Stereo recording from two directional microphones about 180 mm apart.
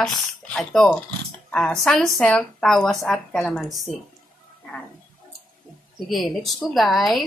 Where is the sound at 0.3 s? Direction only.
5° left (ahead or behind).